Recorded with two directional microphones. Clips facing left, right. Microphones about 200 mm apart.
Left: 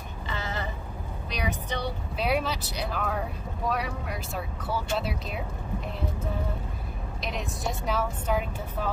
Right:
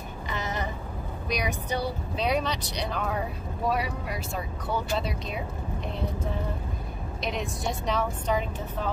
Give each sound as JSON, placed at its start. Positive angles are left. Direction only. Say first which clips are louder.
{"t": 0.3, "sound": "a sound", "louder": "right 2 dB", "side_deg": -20}
{"t": 1.3, "sound": "speech", "louder": "right 2 dB", "side_deg": -10}
{"t": 2.1, "sound": "speech", "louder": "even", "side_deg": 5}
{"t": 7.2, "sound": "speech", "louder": "right 3 dB", "side_deg": 0}